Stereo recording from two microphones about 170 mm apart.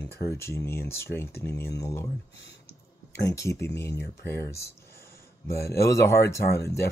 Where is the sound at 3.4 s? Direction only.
15° left (ahead or behind).